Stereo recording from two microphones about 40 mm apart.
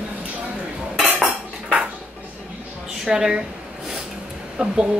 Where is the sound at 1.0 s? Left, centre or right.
Right.